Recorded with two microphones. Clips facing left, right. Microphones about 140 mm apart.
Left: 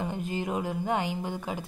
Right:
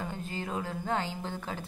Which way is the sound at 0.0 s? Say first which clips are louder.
Left 5 dB; 15° left (ahead or behind).